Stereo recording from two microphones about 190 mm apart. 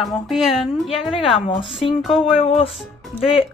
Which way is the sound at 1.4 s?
30° left (ahead or behind).